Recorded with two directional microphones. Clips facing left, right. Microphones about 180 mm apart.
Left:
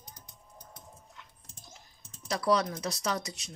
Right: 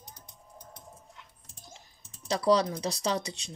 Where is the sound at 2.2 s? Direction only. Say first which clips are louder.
Right 3 dB; 30° right (ahead or behind).